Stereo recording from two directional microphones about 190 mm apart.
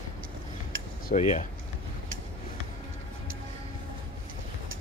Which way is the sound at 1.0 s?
40° left (ahead or behind).